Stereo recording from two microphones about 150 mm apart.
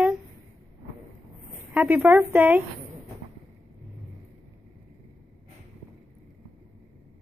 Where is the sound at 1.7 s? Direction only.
10° right (ahead or behind).